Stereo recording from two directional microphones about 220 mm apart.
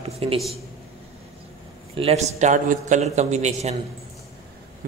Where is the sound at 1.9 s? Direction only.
25° right (ahead or behind).